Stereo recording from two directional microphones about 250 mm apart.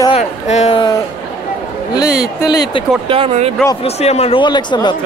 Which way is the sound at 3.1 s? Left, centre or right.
Right.